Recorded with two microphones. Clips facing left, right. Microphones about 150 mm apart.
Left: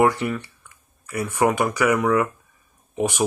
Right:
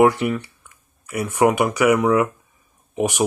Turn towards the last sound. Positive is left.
turn(degrees=-15)  # may be behind; listen again after turning